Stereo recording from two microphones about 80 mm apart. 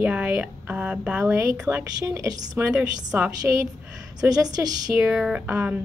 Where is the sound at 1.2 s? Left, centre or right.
Right.